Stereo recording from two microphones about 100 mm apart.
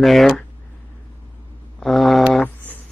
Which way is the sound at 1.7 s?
Centre (ahead or behind).